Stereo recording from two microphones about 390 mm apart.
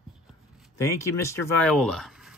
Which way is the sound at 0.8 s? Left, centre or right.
Centre.